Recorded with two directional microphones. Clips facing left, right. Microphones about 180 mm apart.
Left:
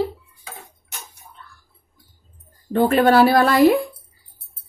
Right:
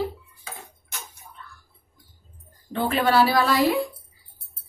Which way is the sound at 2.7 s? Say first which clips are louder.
Left 7 dB; 50° left (ahead or behind).